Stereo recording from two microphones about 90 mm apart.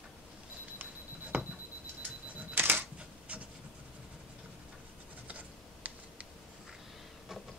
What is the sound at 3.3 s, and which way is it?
Vehicle, 15° right (ahead or behind).